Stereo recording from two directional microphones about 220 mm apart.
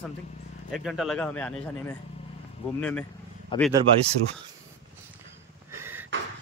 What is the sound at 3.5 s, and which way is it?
Speech, 20° left (ahead or behind).